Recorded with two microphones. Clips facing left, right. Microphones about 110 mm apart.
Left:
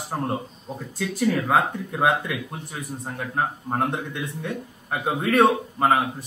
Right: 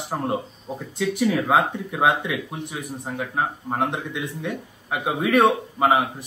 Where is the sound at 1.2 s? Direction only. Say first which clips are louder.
Right 1 dB; 15° right (ahead or behind).